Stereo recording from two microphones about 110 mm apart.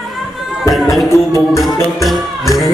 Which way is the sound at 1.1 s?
25° left (ahead or behind).